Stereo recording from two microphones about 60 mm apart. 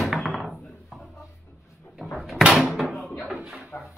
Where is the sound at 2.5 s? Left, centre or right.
Centre.